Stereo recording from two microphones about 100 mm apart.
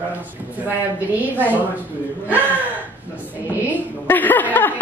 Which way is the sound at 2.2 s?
15° right (ahead or behind).